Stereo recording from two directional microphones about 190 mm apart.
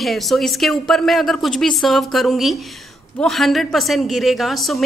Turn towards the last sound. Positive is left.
turn(degrees=0)  # may be behind; listen again after turning